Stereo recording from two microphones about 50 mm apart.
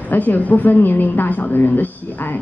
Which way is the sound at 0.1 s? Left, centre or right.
Left.